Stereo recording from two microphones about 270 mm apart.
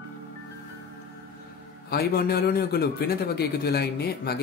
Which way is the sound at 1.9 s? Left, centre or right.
Left.